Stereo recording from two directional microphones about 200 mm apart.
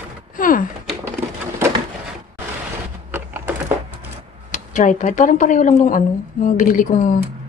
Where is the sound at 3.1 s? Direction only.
10° right (ahead or behind).